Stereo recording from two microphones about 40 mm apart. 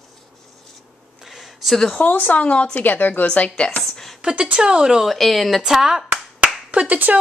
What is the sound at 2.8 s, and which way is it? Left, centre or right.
Speech, left.